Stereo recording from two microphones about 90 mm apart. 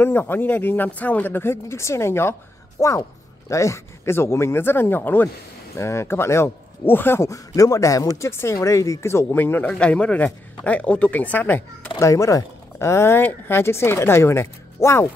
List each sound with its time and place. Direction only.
0.0 s speech: 25° left (ahead or behind)
9.7 s speech: 10° left (ahead or behind)
12.0 s speech: 35° left (ahead or behind)